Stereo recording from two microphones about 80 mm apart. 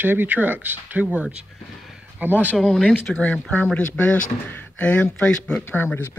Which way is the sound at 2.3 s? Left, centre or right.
Left.